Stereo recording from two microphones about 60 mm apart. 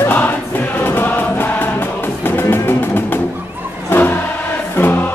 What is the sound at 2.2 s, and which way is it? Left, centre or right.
Music, left.